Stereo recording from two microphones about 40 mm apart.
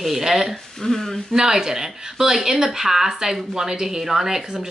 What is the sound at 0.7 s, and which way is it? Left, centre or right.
Speech, centre.